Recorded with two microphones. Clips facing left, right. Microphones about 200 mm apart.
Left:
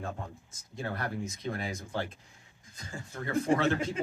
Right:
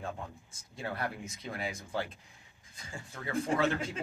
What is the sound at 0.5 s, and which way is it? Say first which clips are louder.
Speech: left 3 dB; 40° left (ahead or behind).